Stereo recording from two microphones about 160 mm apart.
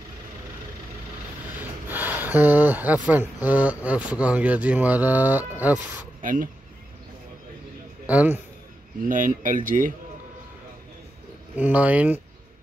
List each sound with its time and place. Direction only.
1.6 s a sound: 10° right (ahead or behind)
3.1 s speech: 10° right (ahead or behind)
6.2 s speech: 60° right (ahead or behind)
8.1 s speech: 10° right (ahead or behind)
9.1 s speech: 55° right (ahead or behind)
11.5 s speech: 10° right (ahead or behind)